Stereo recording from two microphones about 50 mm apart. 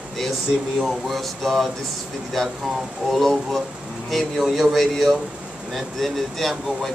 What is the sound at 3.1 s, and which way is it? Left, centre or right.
Speech, centre.